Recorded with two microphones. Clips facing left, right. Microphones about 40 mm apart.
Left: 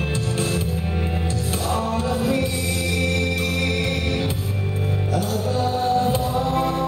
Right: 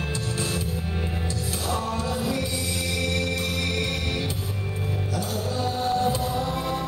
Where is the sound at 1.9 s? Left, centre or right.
Left.